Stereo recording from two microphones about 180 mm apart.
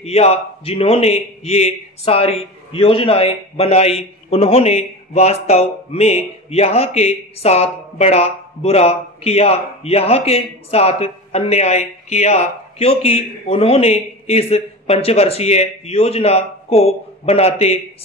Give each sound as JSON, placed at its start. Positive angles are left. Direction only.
{"t": 0.0, "sound": "a man's voice", "side_deg": 35}